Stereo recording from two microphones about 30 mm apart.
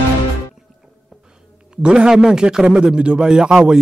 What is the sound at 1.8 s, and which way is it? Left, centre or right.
Speech, right.